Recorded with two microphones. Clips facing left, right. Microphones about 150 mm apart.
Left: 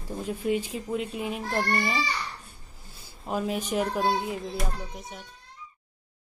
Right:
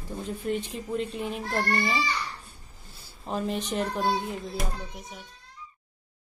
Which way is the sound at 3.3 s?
10° left (ahead or behind).